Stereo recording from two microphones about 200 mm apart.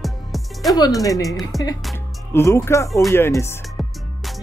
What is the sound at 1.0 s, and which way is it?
Speech, 15° left (ahead or behind).